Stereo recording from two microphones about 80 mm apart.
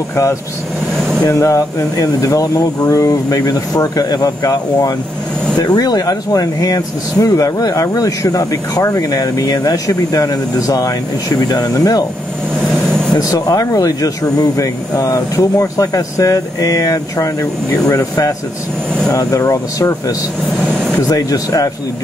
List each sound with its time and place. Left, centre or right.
0.1 s speech: left
13.2 s speech: left
21.1 s speech: left